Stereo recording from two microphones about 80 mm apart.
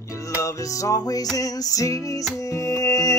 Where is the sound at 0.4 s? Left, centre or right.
Left.